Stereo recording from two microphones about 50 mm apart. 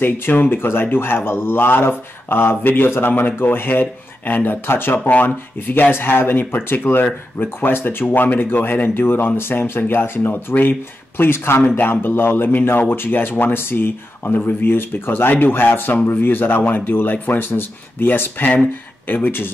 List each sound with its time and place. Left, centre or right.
0.0 s speech: left
4.6 s speech: left
11.6 s speech: left